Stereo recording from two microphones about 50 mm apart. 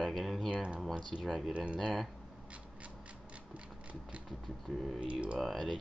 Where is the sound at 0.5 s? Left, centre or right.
Right.